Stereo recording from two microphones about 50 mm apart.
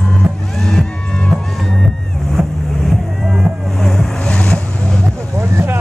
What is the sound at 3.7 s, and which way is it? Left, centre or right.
Vehicle, centre.